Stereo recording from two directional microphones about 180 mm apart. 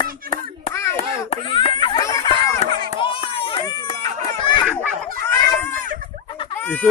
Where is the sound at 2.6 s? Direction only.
30° left (ahead or behind).